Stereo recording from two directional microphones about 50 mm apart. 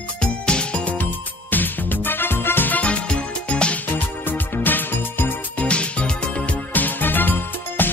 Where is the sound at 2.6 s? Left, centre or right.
Left.